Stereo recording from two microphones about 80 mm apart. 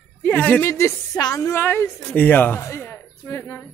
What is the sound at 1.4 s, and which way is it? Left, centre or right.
Speech, left.